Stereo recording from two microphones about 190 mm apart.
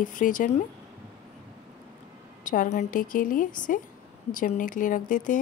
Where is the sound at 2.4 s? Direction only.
45° left (ahead or behind).